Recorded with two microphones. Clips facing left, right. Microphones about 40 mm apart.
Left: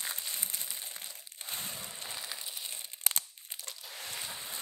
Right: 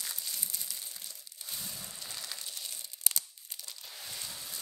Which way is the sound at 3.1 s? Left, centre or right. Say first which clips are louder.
Left 2 dB; left.